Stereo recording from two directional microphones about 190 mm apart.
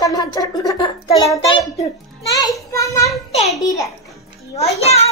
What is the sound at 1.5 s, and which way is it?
Speech, 20° left (ahead or behind).